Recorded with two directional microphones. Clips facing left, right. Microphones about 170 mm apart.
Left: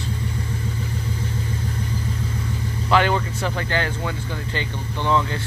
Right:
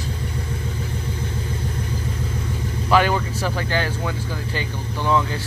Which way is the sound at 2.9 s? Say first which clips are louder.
Right 1 dB; 10° right (ahead or behind).